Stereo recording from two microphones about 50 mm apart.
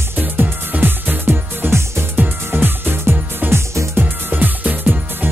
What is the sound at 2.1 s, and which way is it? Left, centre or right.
Music, right.